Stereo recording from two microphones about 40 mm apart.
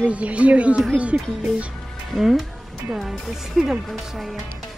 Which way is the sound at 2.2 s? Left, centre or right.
Centre.